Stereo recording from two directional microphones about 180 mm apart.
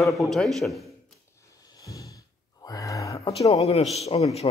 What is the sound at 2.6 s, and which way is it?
Gasp, 20° left (ahead or behind).